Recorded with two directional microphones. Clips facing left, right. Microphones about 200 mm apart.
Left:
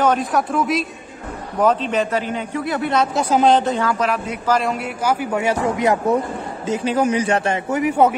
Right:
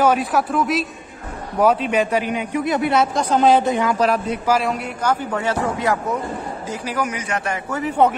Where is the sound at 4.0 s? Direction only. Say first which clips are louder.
Right 3 dB; 35° right (ahead or behind).